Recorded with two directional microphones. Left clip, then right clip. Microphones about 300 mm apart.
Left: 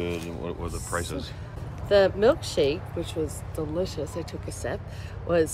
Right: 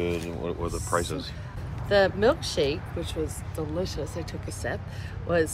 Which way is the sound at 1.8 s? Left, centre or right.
Centre.